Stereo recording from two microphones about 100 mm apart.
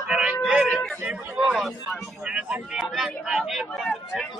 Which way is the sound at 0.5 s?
10° right (ahead or behind).